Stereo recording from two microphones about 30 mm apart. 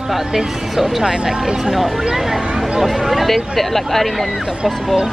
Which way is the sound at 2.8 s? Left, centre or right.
Centre.